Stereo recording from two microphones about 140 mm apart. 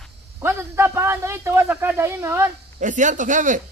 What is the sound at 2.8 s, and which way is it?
Speech, 65° right (ahead or behind).